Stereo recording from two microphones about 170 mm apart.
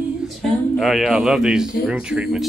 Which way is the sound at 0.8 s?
Centre (ahead or behind).